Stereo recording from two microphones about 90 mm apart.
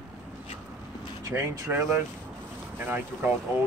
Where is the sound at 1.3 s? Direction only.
30° right (ahead or behind).